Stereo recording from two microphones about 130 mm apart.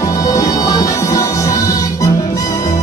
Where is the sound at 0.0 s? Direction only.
25° left (ahead or behind).